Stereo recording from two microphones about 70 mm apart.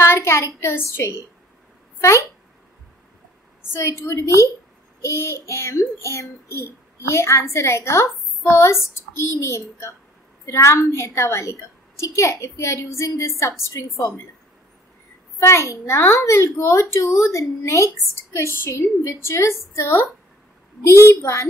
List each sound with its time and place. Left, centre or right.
0.0 s a woman's voice: left
3.7 s a woman's voice: left
15.3 s a child's voice: left